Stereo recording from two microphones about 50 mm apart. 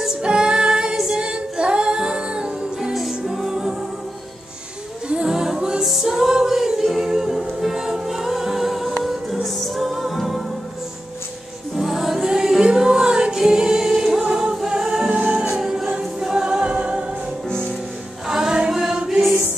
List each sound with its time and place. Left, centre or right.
0.2 s singing: centre
2.9 s music: centre
5.0 s music: centre
11.7 s music: centre
15.1 s music: right
15.5 s choir: centre
18.2 s music: centre